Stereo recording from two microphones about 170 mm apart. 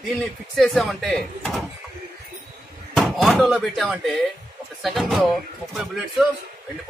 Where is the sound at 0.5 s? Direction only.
Centre (ahead or behind).